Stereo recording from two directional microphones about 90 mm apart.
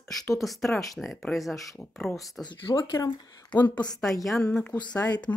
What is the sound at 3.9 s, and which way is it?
Speech, 5° left (ahead or behind).